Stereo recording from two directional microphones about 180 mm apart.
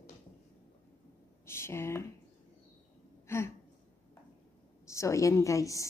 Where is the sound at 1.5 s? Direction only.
15° left (ahead or behind).